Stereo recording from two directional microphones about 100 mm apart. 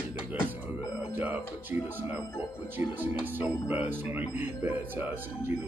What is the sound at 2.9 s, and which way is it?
Speech, 15° right (ahead or behind).